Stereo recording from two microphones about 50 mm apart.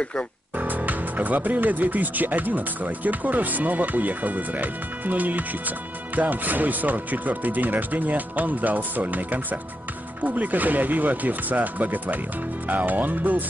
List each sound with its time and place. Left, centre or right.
0.6 s speech: right